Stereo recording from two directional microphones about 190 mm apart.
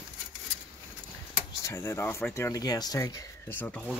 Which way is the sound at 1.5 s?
15° left (ahead or behind).